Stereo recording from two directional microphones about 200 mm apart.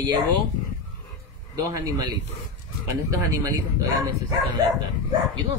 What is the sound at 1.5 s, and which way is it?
Speech, 20° right (ahead or behind).